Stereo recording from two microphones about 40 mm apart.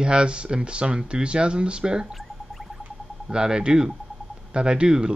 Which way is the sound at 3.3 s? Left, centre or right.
Centre.